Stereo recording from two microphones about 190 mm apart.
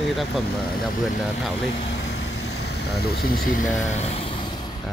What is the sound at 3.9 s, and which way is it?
Vehicle, 30° left (ahead or behind).